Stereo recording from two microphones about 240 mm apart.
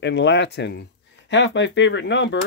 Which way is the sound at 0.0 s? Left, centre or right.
Left.